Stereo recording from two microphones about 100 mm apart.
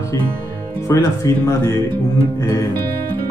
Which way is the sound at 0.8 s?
35° left (ahead or behind).